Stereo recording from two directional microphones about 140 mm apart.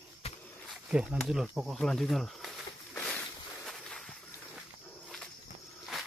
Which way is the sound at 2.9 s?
10° left (ahead or behind).